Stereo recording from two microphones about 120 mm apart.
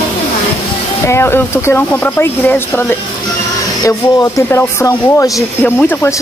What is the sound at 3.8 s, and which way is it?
Speech, 30° left (ahead or behind).